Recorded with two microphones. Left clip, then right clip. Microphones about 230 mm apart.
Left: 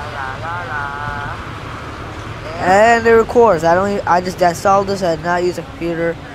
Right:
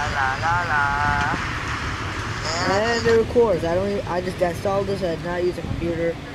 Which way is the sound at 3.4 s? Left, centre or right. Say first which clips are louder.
Left 8 dB; centre.